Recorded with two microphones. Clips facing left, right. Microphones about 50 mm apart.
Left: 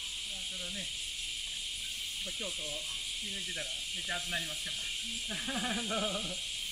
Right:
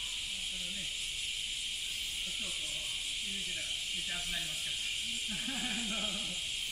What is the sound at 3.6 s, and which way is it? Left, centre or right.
Speech, left.